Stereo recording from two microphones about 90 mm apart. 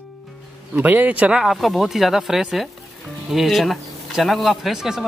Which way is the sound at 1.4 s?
Centre (ahead or behind).